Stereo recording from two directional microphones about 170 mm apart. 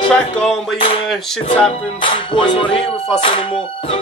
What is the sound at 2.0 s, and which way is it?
Music, 30° left (ahead or behind).